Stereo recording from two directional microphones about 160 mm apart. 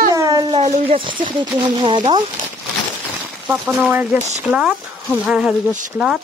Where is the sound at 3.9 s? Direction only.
10° right (ahead or behind).